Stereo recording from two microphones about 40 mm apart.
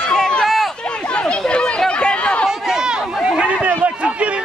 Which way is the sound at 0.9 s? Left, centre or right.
Left.